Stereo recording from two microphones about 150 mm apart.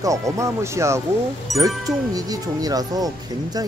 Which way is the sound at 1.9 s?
25° right (ahead or behind).